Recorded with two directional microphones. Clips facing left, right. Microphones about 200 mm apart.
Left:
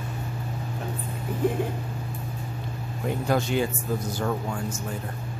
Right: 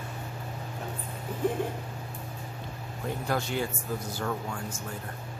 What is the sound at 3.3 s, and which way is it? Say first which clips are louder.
Speech: left 6 dB; 20° left (ahead or behind).